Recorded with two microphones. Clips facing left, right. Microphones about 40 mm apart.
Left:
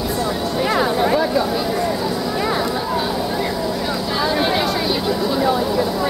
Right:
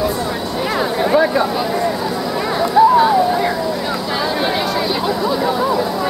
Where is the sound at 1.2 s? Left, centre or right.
Right.